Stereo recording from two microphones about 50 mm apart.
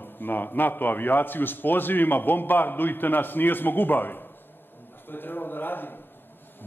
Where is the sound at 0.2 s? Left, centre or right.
Left.